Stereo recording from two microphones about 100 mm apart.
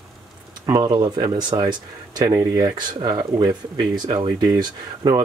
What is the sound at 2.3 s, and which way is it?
Speech, 30° right (ahead or behind).